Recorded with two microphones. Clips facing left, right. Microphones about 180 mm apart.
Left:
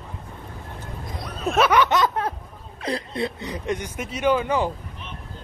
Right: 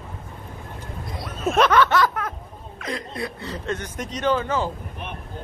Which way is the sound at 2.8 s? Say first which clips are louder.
Left 4 dB; 30° left (ahead or behind).